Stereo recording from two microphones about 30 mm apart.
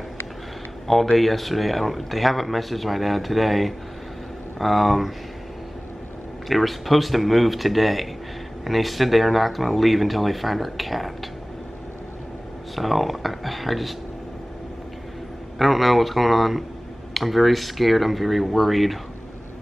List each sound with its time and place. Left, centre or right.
1.1 s speech: centre
6.5 s speech: centre
12.7 s speech: centre
15.6 s speech: centre